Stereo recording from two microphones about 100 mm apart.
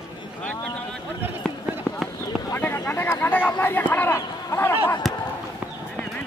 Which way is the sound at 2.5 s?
20° left (ahead or behind).